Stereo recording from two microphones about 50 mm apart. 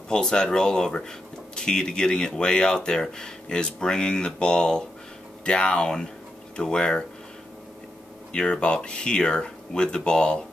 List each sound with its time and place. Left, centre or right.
0.1 s speech: centre
8.3 s speech: centre